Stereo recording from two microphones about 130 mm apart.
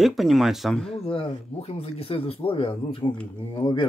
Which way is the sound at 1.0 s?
45° left (ahead or behind).